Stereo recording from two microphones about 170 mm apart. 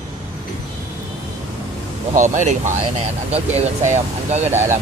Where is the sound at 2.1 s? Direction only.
45° right (ahead or behind).